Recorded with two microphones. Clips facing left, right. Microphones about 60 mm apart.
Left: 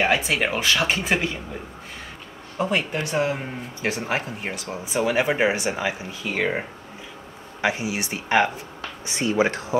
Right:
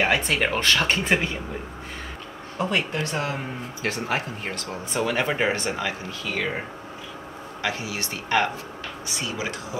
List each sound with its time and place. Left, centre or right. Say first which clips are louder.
0.1 s speech: left 1 dB; centre
2.6 s speech: left 1 dB; centre
7.6 s speech: left 5 dB; centre
9.0 s speech: left 9 dB; left